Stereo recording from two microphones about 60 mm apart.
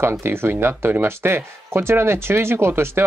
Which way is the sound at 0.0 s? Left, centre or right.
Right.